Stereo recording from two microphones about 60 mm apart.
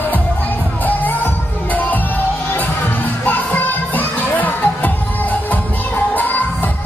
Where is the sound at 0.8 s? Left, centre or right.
Left.